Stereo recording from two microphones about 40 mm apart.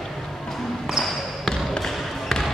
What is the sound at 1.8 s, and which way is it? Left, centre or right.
Basketball bounce, centre.